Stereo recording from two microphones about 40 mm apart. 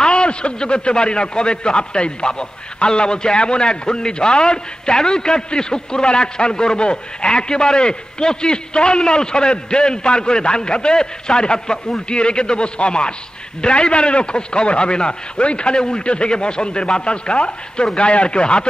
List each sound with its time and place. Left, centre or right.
0.0 s a man's voice: left